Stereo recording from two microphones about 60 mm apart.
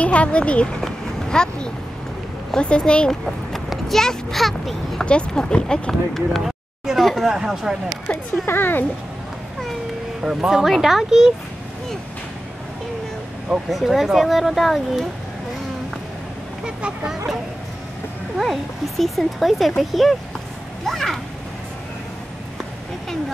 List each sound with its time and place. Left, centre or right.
0.0 s speech: left
0.8 s a sound: centre
2.5 s speech: centre
3.3 s a child's voice: centre
5.0 s speech: centre
7.3 s speech: centre
8.5 s speech: left
10.2 s speech: centre
13.7 s speech: centre
16.6 s speech: centre
18.4 s speech: centre